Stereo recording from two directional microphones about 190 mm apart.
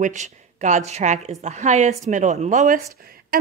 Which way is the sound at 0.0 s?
40° right (ahead or behind).